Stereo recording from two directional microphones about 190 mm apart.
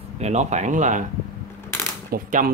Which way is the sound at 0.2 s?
35° right (ahead or behind).